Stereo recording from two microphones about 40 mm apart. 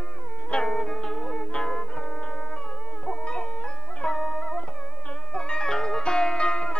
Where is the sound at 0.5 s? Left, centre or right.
Centre.